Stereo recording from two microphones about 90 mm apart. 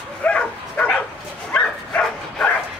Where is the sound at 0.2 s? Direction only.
15° left (ahead or behind).